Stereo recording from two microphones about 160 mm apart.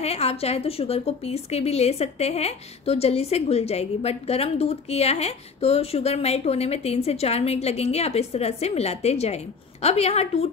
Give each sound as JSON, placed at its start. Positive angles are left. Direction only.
{"t": 0.0, "sound": "a woman's voice", "side_deg": 40}